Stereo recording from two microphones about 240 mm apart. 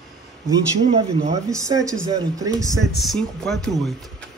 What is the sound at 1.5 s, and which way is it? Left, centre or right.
Speech, centre.